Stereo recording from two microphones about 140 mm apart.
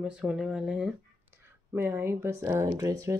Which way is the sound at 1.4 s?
20° right (ahead or behind).